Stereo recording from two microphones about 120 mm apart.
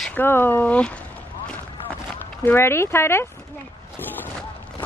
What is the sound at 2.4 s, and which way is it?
Speech, 20° left (ahead or behind).